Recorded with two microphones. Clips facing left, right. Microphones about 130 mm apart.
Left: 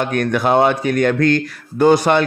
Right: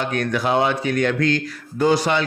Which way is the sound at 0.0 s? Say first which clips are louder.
Left 4 dB; 55° left (ahead or behind).